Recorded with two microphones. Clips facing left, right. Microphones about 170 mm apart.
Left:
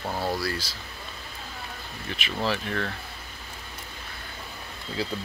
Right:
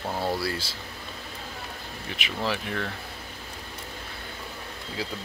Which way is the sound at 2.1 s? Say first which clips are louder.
Left 1 dB; 15° right (ahead or behind).